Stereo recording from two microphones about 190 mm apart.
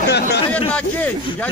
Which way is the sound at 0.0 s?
60° left (ahead or behind).